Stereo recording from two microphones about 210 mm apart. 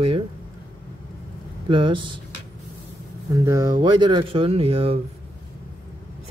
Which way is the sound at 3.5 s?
15° right (ahead or behind).